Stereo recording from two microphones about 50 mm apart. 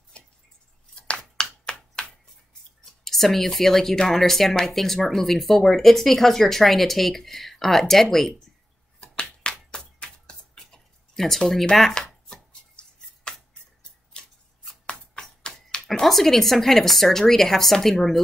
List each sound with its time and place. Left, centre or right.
1.0 s finger snapping: centre
2.8 s speech: centre
9.1 s a sound: centre
12.3 s chopping: centre
15.9 s speech: centre